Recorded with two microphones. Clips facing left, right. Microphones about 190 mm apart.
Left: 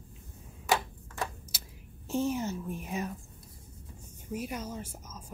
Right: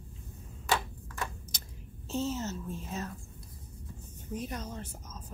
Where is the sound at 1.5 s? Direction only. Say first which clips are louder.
Right 1 dB; 5° left (ahead or behind).